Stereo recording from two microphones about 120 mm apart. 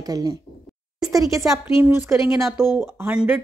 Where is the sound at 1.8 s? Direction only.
20° right (ahead or behind).